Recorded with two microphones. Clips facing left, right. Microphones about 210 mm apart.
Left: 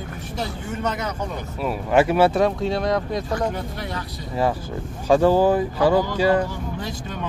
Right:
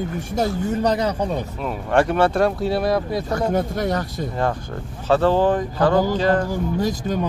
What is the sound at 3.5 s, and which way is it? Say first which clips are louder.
Speech: right 9 dB; 45° right (ahead or behind).